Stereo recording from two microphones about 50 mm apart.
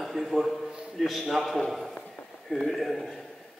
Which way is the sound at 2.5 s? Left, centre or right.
Centre.